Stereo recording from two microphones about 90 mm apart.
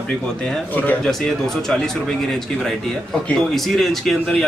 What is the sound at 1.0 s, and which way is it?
Speech, 5° left (ahead or behind).